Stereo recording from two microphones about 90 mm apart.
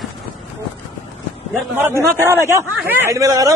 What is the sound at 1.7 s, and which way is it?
A man's voice, 25° right (ahead or behind).